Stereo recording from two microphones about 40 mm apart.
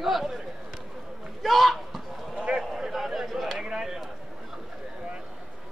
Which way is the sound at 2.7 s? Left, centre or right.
Centre.